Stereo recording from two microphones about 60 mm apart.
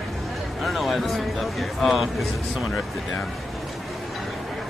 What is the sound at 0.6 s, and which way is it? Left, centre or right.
Speech, centre.